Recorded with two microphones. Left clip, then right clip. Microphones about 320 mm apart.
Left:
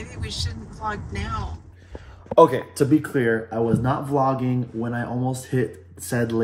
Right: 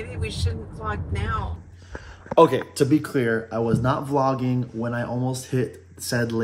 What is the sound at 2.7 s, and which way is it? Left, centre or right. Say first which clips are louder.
Speech: left 1 dB; centre.